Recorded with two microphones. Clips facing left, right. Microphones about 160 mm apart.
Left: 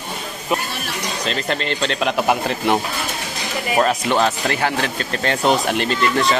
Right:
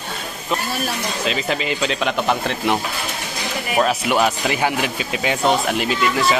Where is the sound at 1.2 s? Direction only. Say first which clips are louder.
Even; 5° right (ahead or behind).